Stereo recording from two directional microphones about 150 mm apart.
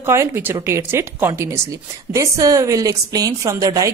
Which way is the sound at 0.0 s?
15° right (ahead or behind).